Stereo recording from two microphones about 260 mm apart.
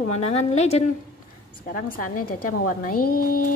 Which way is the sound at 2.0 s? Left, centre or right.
Left.